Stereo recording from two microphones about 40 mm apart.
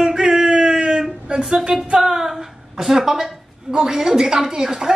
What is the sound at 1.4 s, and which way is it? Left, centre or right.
A woman's voice, centre.